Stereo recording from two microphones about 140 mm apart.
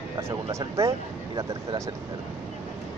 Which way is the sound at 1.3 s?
35° right (ahead or behind).